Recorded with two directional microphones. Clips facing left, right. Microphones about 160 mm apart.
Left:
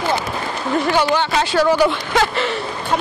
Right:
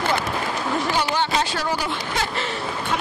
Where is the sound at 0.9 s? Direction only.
85° left.